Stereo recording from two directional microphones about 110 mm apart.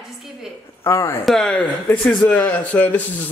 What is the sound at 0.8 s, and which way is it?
Speech, 25° left (ahead or behind).